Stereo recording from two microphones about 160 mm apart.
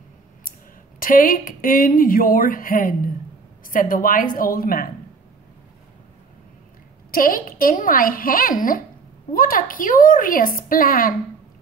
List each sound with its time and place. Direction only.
0.5 s a woman's voice: 60° left (ahead or behind)
7.1 s a woman's voice: 60° left (ahead or behind)